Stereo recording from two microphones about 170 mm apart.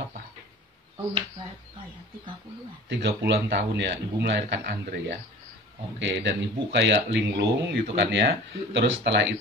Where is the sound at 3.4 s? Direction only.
80° right.